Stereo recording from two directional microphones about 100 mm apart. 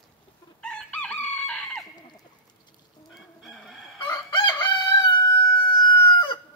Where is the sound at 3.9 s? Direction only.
50° left (ahead or behind).